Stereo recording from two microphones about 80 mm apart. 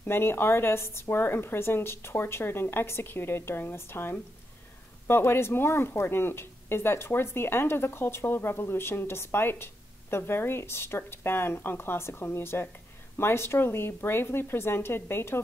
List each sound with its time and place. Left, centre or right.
0.0 s speech: left